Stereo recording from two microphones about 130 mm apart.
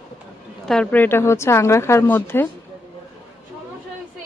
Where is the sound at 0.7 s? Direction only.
10° left (ahead or behind).